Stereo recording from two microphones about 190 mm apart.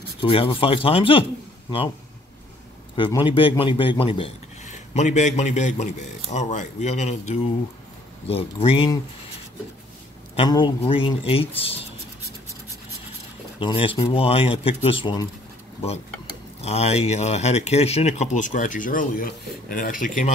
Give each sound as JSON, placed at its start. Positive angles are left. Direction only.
{"t": 0.2, "sound": "speech", "side_deg": 25}
{"t": 3.0, "sound": "speech", "side_deg": 25}
{"t": 10.5, "sound": "speech", "side_deg": 25}
{"t": 13.6, "sound": "speech", "side_deg": 30}
{"t": 16.6, "sound": "speech", "side_deg": 35}